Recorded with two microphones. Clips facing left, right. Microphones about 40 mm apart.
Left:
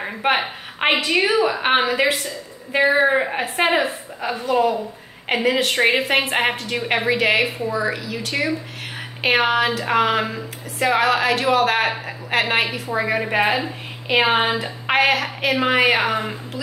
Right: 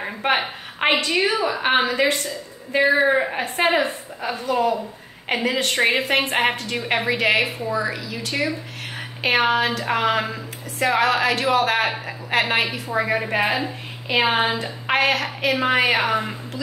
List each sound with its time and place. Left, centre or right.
0.0 s a woman's voice: centre
2.7 s a woman's voice: centre